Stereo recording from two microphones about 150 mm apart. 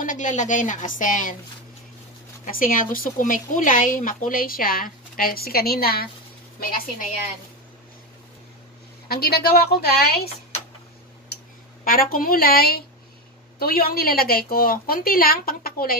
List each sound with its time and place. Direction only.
0.0 s a woman's voice: 60° left (ahead or behind)
2.4 s speech: 65° left (ahead or behind); by 6.0 s 90° left
9.1 s a woman's voice: 90° left
11.8 s a woman's voice: 75° left (ahead or behind)